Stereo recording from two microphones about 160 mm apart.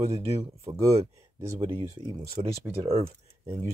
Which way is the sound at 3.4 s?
20° right (ahead or behind).